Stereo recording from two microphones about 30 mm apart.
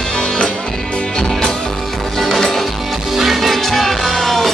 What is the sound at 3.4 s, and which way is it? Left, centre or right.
Music, centre.